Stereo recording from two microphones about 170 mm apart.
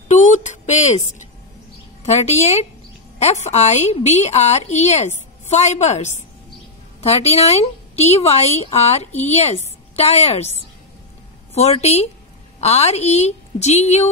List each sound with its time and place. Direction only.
0.1 s a sound: 45° left (ahead or behind)
2.0 s a woman's voice: 40° left (ahead or behind)
11.5 s a woman's voice: 40° left (ahead or behind)